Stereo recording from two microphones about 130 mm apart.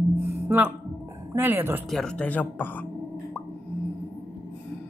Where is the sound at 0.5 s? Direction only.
20° right (ahead or behind).